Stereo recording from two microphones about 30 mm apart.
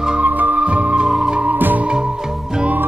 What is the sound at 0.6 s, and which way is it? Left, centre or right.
Music, right.